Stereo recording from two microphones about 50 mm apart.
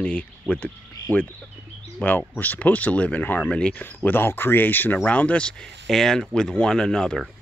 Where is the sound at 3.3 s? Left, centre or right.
Centre.